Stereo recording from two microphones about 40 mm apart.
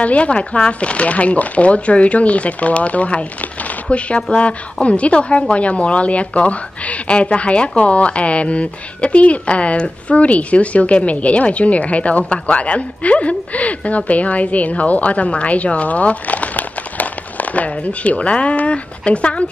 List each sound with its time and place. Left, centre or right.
0.0 s speech: left